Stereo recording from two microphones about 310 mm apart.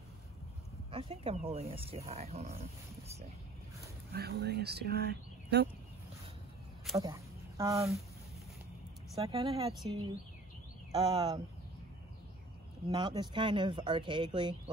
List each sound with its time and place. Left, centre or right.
0.9 s speech: centre
4.1 s speech: right
7.0 s speech: centre
9.1 s speech: centre
10.9 s speech: centre
12.9 s speech: centre